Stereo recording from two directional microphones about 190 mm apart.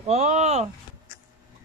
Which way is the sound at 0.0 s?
35° right (ahead or behind).